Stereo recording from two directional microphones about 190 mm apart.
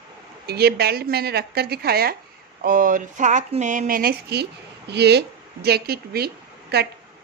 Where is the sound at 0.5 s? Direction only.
55° right (ahead or behind).